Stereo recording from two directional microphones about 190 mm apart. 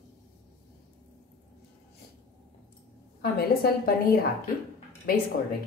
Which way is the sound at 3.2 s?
55° left (ahead or behind).